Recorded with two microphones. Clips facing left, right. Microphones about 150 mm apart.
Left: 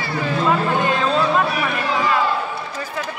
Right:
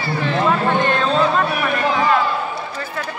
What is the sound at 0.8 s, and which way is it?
Speech, 10° left (ahead or behind).